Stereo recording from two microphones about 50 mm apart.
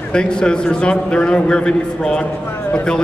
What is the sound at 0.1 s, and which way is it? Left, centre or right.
A man's voice, centre.